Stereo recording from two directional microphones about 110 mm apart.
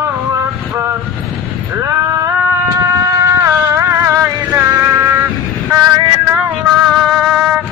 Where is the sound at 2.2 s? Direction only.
30° right (ahead or behind).